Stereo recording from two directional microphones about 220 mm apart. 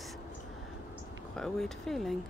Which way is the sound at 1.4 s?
Centre (ahead or behind).